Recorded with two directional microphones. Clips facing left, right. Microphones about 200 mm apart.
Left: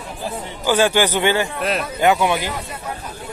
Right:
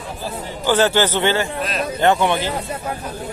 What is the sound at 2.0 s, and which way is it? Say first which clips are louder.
Speech: right 1 dB; 5° left (ahead or behind).